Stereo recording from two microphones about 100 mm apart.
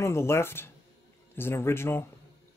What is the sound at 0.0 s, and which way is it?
Speech, 25° left (ahead or behind).